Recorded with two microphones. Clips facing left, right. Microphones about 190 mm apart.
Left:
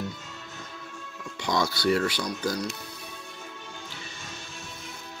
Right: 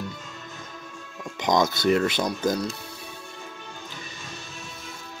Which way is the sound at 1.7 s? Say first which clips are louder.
Right 3 dB; 20° right (ahead or behind).